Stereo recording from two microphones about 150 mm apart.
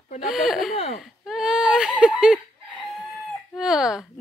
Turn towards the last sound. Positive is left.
turn(degrees=-5)  # may be behind; listen again after turning